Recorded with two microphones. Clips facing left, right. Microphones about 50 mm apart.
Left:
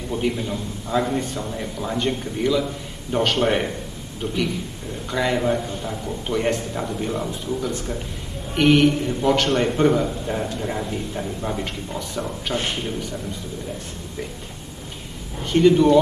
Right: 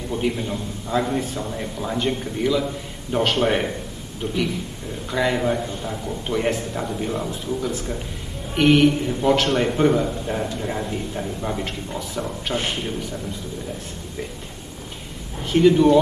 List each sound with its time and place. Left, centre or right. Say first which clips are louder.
0.1 s a man's voice: even; centre
5.1 s a man's voice: even; centre
15.5 s a man's voice: even; centre